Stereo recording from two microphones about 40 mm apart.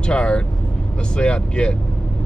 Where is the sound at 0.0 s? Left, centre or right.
Left.